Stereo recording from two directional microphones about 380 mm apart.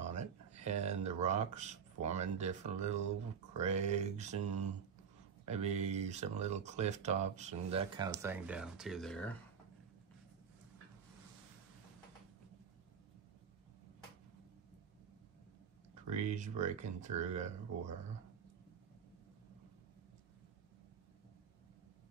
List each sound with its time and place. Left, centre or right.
0.0 s a sound: centre
3.5 s speech: centre
16.1 s speech: centre